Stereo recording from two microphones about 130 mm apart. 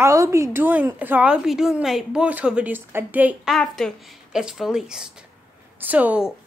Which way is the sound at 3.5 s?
5° left (ahead or behind).